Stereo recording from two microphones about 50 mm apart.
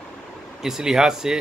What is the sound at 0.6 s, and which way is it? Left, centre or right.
Speech, centre.